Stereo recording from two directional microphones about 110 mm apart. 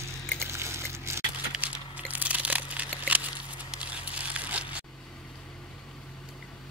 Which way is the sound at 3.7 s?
10° right (ahead or behind).